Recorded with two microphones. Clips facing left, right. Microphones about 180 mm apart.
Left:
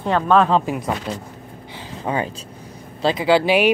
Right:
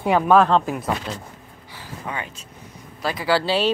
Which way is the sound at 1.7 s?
20° left (ahead or behind).